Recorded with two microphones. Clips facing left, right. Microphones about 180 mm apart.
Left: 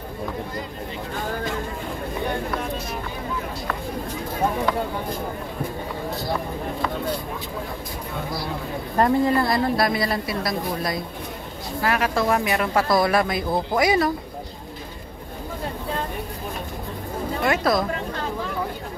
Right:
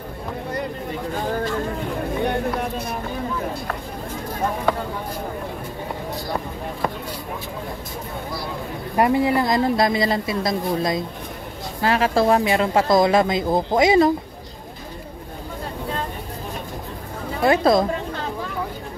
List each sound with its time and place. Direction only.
8.9 s speech: 10° right (ahead or behind)
17.5 s speech: 25° right (ahead or behind)